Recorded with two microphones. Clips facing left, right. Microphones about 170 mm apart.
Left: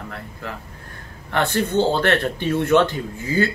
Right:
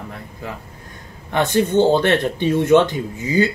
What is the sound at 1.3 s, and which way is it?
A man's voice, 15° right (ahead or behind).